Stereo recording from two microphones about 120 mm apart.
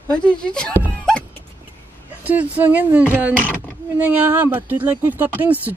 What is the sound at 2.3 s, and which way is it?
Speech, 15° right (ahead or behind).